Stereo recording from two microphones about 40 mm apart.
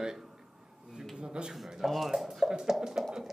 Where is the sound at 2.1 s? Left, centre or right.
Centre.